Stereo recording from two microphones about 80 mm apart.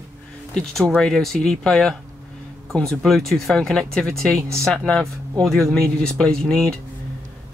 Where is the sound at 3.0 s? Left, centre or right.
Centre.